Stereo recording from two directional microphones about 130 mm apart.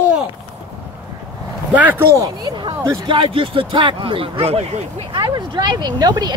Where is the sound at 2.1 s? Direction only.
25° right (ahead or behind).